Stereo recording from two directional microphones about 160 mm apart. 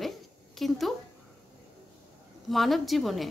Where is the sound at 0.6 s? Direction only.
Centre (ahead or behind).